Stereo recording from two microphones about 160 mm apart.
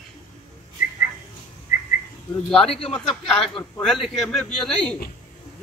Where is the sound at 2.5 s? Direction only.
35° left (ahead or behind).